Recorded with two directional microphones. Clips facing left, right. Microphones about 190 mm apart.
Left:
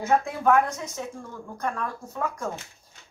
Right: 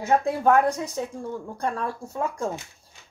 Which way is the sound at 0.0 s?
35° right (ahead or behind).